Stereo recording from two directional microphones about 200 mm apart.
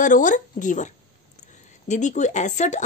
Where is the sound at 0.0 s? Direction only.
40° left (ahead or behind).